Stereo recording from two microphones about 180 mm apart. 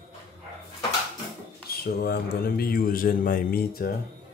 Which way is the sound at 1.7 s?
60° left (ahead or behind).